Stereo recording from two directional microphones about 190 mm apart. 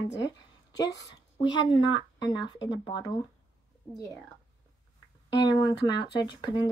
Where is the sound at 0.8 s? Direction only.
65° left (ahead or behind).